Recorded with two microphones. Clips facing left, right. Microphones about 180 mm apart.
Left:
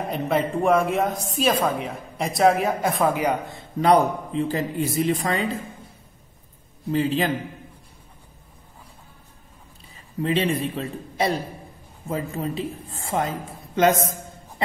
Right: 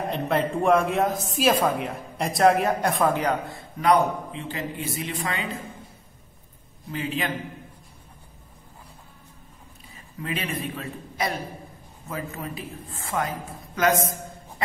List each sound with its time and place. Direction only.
0.1 s a woman's voice: 5° left (ahead or behind)
3.4 s a man's voice: 20° left (ahead or behind)
3.9 s a man's voice: 40° left (ahead or behind)
6.9 s a man's voice: 35° left (ahead or behind)
10.2 s a woman's voice: 30° left (ahead or behind)